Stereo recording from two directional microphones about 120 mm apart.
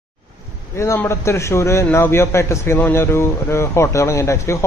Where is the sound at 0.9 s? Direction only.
20° left (ahead or behind).